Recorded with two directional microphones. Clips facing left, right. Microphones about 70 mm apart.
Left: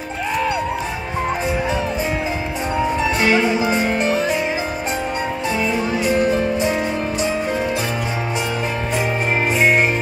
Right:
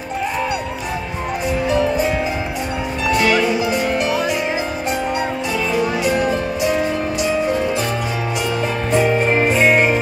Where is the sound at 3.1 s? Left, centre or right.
Left.